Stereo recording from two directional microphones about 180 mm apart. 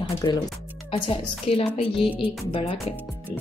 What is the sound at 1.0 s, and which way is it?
Speech, 30° left (ahead or behind).